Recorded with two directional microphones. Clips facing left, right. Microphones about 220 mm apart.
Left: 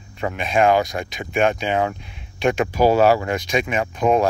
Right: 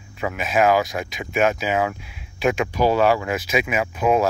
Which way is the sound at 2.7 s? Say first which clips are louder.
Left 4 dB; 45° left (ahead or behind).